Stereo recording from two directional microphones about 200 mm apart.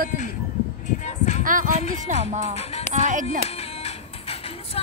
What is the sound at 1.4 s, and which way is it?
Speech, 40° right (ahead or behind).